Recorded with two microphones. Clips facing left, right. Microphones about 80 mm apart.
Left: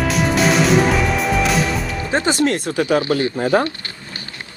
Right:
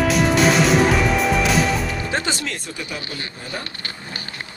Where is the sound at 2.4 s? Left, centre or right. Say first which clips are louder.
Left 12 dB; left.